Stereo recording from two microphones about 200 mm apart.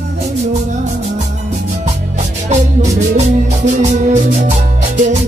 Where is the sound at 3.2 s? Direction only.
35° right (ahead or behind).